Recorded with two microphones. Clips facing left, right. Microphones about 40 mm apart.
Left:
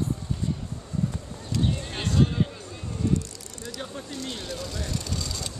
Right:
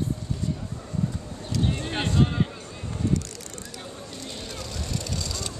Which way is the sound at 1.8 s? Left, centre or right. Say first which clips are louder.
Right 2 dB; right.